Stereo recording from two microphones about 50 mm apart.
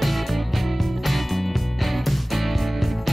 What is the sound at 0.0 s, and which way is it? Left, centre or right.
Music, centre.